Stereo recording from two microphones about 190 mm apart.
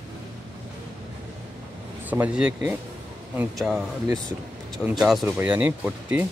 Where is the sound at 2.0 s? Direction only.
10° right (ahead or behind).